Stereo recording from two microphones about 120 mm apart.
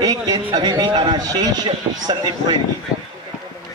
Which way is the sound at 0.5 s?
35° right (ahead or behind).